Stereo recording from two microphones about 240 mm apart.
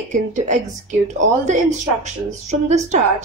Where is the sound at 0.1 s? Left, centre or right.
Right.